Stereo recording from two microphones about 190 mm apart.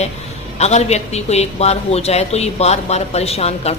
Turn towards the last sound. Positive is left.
turn(degrees=35)  # may be behind; listen again after turning